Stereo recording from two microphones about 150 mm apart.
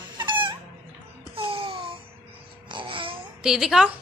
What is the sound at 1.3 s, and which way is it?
Babbling, 35° right (ahead or behind).